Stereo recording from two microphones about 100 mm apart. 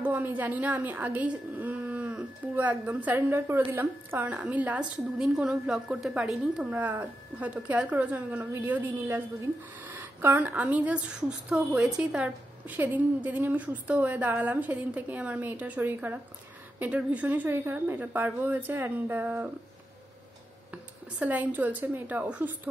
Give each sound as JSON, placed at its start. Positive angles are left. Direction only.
{"t": 0.0, "sound": "a woman's voice", "side_deg": -20}
{"t": 20.7, "sound": "a woman's voice", "side_deg": -15}